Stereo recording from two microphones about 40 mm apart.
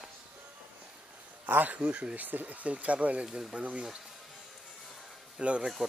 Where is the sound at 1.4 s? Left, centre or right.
Right.